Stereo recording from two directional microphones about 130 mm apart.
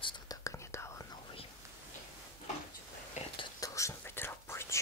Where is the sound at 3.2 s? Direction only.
60° left (ahead or behind).